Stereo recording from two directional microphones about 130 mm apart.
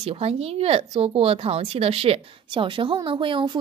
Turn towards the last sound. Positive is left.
turn(degrees=-40)  # may be behind; listen again after turning